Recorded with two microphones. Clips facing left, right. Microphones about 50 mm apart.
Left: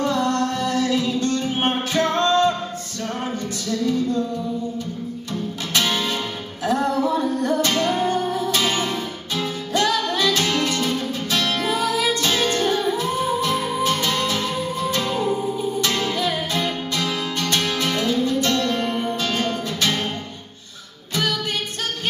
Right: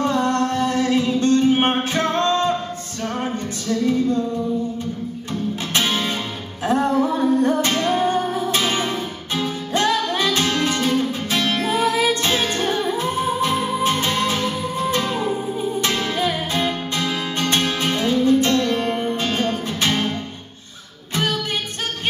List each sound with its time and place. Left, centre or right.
0.0 s music: right
5.3 s music: right
21.1 s music: right